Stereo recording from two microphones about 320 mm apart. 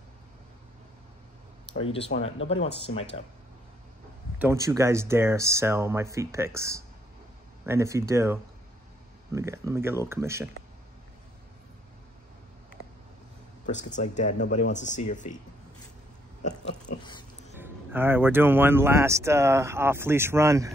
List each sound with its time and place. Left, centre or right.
2.0 s speech: left
2.5 s speech: centre
4.4 s speech: centre
13.7 s speech: left
16.4 s speech: centre
17.6 s speech: centre